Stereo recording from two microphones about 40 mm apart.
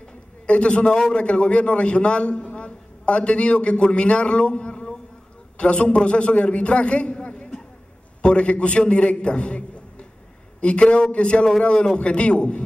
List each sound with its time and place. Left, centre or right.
0.5 s a man's voice: left